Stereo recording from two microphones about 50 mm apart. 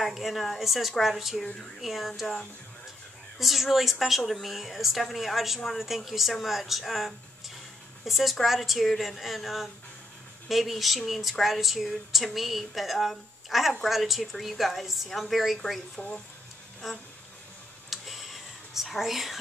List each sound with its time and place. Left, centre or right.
0.0 s speech: centre
16.0 s speech: left
17.8 s a sound: centre